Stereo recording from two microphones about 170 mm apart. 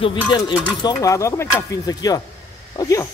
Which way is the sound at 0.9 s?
20° left (ahead or behind).